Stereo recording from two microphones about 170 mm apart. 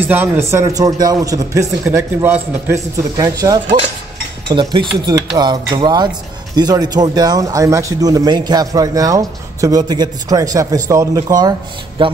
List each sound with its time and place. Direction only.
0.0 s speech: 10° right (ahead or behind)
12.0 s mantra: 30° right (ahead or behind)